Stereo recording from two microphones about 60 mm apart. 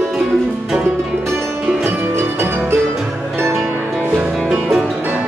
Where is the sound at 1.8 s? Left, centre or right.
Right.